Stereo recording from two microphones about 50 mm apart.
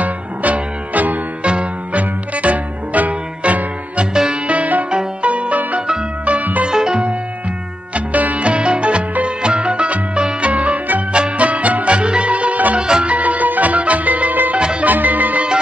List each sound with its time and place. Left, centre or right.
0.0 s music: right
1.4 s music: right
4.5 s music: right
6.7 s music: centre
7.9 s music: right
12.7 s music: centre
13.1 s music: right
14.6 s music: centre
14.9 s music: right